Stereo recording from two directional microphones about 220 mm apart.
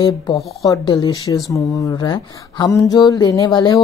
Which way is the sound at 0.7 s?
15° left (ahead or behind).